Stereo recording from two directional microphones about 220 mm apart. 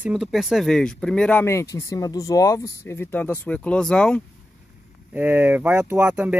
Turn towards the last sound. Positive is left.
turn(degrees=-5)  # may be behind; listen again after turning